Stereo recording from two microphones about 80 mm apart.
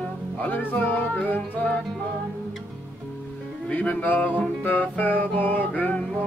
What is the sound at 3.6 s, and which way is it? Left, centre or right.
Music, centre.